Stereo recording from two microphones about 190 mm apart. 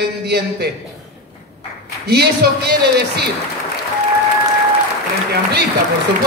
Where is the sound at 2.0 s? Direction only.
60° right (ahead or behind).